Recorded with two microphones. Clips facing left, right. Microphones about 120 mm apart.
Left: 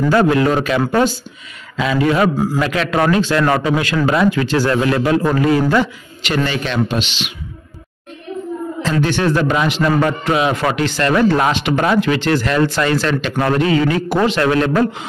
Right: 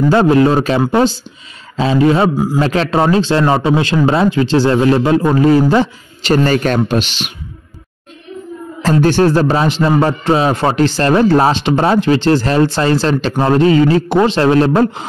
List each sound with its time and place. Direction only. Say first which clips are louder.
0.1 s speech: right 3 dB; 30° right (ahead or behind)
2.3 s a man's voice: right 2 dB; 15° right (ahead or behind)
2.6 s speech: right 4 dB; 35° right (ahead or behind)
8.9 s speech: right 6 dB; 35° right (ahead or behind)